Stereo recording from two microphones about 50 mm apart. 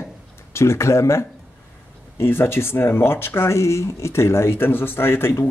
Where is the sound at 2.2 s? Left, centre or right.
Left.